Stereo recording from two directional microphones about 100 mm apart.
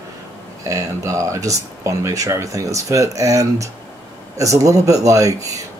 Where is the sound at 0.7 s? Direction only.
35° right (ahead or behind).